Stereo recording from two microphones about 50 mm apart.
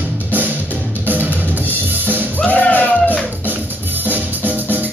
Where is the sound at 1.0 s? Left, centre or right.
Right.